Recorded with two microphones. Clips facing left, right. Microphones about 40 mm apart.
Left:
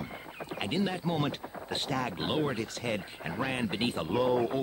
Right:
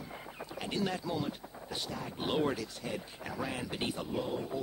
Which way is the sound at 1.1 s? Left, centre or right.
Left.